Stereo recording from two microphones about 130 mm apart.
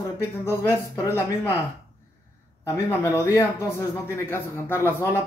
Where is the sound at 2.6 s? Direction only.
25° left (ahead or behind).